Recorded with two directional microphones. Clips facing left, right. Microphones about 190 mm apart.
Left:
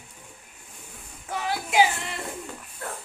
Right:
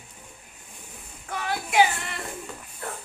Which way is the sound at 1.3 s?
25° left (ahead or behind).